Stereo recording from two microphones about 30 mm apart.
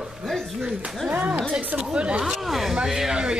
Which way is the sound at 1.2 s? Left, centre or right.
Right.